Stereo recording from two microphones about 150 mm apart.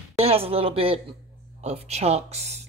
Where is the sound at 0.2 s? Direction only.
40° right (ahead or behind).